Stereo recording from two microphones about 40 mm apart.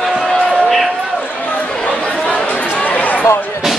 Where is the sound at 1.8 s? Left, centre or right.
Left.